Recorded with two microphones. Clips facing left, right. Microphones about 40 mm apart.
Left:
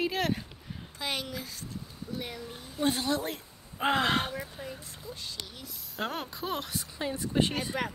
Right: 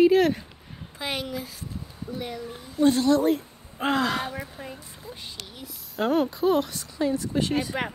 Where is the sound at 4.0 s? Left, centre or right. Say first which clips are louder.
Right 2 dB; left.